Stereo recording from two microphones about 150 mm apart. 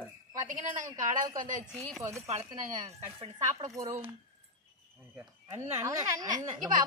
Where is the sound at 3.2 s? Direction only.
50° right (ahead or behind).